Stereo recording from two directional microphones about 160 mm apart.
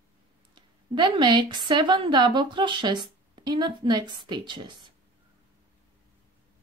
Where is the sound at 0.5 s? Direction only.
30° right (ahead or behind).